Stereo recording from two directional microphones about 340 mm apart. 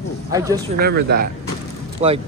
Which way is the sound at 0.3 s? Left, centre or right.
Centre.